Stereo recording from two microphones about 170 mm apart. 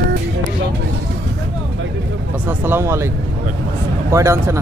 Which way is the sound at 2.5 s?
15° right (ahead or behind).